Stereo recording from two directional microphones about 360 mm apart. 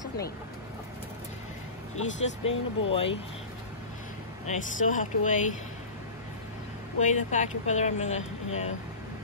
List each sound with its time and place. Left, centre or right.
2.0 s speech: left
4.5 s speech: left
7.0 s speech: centre